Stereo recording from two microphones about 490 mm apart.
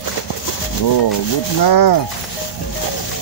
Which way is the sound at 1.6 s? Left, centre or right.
Left.